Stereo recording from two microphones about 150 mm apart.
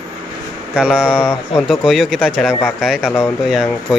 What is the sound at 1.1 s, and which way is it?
Speech, 20° left (ahead or behind).